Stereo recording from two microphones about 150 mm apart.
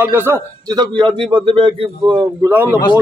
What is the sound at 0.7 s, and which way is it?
A man's voice, 30° right (ahead or behind).